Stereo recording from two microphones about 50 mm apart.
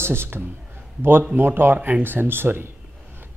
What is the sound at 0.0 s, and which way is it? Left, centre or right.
Speech, right.